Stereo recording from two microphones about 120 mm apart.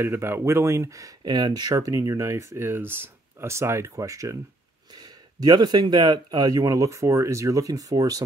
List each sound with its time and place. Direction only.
0.0 s speech: 20° right (ahead or behind)